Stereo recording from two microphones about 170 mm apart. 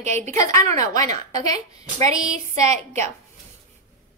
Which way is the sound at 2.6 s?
40° right (ahead or behind).